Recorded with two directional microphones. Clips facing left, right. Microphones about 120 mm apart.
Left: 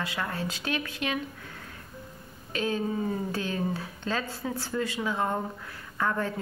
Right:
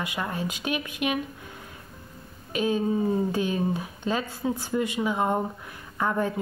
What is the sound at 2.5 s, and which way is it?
A woman's voice, 15° right (ahead or behind).